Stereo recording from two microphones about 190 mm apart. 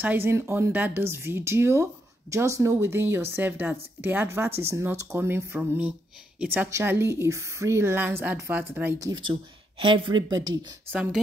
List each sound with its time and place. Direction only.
0.0 s speech: 10° right (ahead or behind)
9.8 s speech: 25° right (ahead or behind)
10.9 s speech: 5° right (ahead or behind)